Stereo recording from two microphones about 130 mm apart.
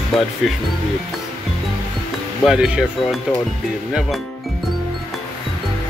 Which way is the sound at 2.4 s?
5° right (ahead or behind).